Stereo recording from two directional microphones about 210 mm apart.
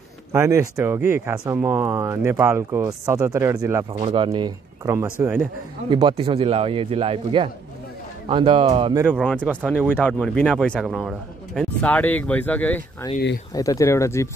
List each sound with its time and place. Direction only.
0.3 s speech: 10° right (ahead or behind)
3.9 s a man's voice: 25° right (ahead or behind); by 5.5 s 10° right (ahead or behind)
5.9 s a man's voice: 25° right (ahead or behind)
9.2 s speech: 5° left (ahead or behind)
9.6 s speech: 5° right (ahead or behind)
9.8 s speech: 10° left (ahead or behind)
11.8 s speech: 5° left (ahead or behind)